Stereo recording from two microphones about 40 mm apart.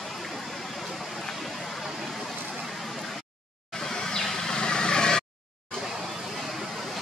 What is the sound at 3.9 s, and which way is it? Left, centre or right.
Vehicle, centre.